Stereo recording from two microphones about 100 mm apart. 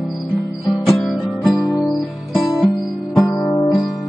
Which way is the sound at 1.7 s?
Centre (ahead or behind).